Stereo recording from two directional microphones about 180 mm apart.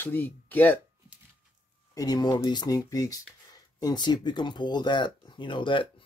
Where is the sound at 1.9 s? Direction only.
20° left (ahead or behind).